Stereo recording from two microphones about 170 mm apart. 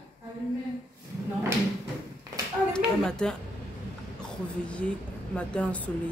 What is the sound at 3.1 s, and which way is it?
Speech, 5° left (ahead or behind).